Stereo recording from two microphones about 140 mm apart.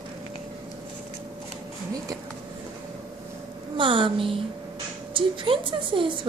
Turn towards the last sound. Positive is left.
turn(degrees=-35)  # may be behind; listen again after turning